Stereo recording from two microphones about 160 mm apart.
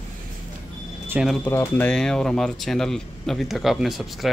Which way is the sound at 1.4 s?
15° left (ahead or behind).